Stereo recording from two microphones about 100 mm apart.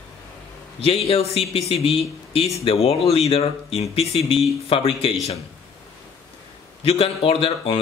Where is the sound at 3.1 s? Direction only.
85° left.